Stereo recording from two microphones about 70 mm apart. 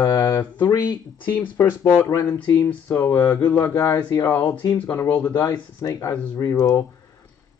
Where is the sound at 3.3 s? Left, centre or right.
Left.